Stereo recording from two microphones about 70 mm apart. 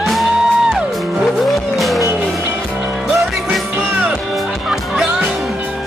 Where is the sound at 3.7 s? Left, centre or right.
Right.